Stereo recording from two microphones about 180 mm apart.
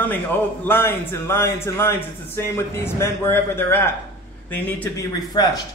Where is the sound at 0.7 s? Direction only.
10° left (ahead or behind).